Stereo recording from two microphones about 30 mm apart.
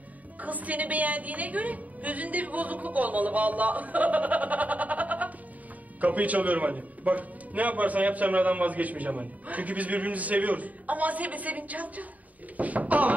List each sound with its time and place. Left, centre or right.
0.4 s a man's voice: right